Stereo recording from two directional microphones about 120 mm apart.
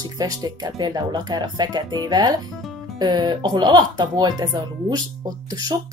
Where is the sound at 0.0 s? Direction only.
30° right (ahead or behind).